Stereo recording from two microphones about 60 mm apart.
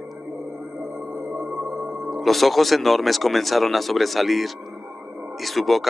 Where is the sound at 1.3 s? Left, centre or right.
Right.